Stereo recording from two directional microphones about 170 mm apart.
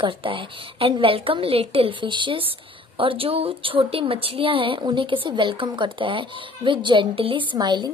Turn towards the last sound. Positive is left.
turn(degrees=-25)  # may be behind; listen again after turning